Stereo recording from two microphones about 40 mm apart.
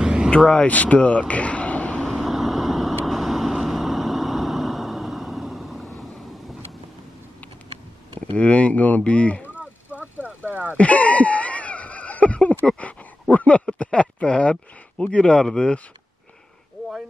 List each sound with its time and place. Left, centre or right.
0.0 s vehicle: centre
0.7 s speech: left
2.0 s vehicle: centre
2.2 s vehicle: centre
8.4 s speech: left
9.9 s a sound: right
10.8 s a sound: left
13.3 s speech: left
13.9 s speech: left